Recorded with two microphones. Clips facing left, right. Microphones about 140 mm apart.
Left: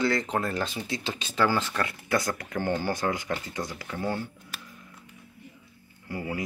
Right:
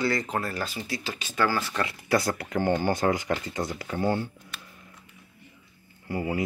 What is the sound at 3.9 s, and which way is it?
Speech, 30° right (ahead or behind).